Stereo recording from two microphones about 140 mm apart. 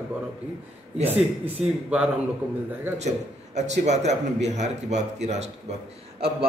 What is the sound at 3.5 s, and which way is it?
A man's voice, 55° right (ahead or behind).